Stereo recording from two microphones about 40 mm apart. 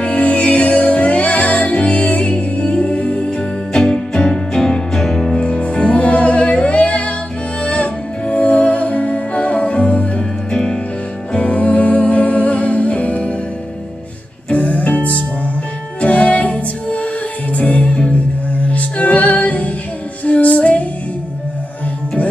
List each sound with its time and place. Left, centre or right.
0.0 s music: left; by 5.4 s centre
5.4 s music: left
11.3 s music: left
14.5 s music: left